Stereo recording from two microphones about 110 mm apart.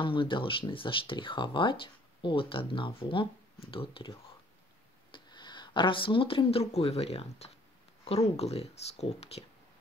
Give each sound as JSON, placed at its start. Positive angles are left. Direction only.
{"t": 0.0, "sound": "speech", "side_deg": 50}
{"t": 5.1, "sound": "speech", "side_deg": 45}